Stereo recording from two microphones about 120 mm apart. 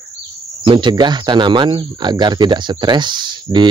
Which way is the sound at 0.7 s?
40° right (ahead or behind).